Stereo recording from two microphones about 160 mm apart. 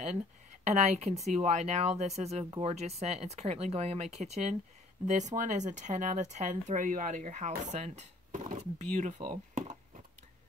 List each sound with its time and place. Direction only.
0.7 s speech: 45° right (ahead or behind)